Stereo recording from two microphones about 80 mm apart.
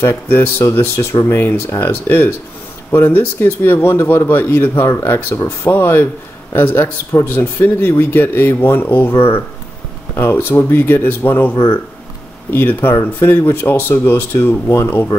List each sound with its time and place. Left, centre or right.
0.0 s speech: left
10.1 s speech: left
12.5 s speech: left